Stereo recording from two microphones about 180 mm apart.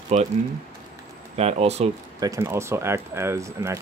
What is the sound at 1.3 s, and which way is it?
Speech, 35° right (ahead or behind).